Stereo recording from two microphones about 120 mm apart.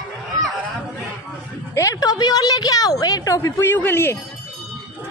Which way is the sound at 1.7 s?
30° left (ahead or behind).